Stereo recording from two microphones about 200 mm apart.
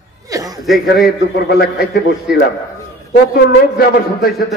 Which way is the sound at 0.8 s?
55° left (ahead or behind).